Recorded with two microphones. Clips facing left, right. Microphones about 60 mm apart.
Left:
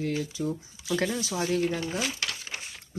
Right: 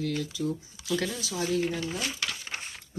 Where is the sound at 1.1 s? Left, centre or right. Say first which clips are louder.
Left 1 dB; left.